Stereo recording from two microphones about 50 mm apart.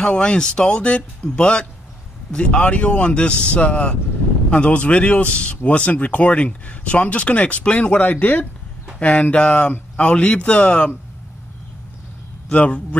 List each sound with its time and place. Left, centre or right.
0.0 s speech: centre
8.0 s speech: left
9.0 s speech: left
12.4 s a man's voice: left